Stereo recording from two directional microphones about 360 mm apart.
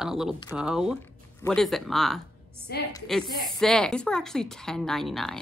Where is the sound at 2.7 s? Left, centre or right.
Left.